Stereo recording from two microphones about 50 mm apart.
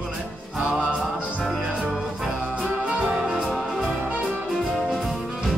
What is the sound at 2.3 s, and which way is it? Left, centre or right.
Brass instrument, right.